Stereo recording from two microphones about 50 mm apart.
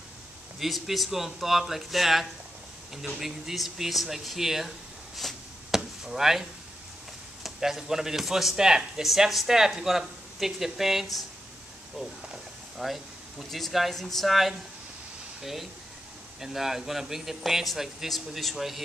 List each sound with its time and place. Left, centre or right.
0.6 s a man's voice: centre
7.4 s speech: centre
12.7 s a man's voice: centre